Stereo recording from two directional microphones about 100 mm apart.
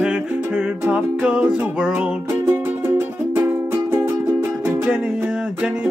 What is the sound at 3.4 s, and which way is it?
Music, 25° right (ahead or behind).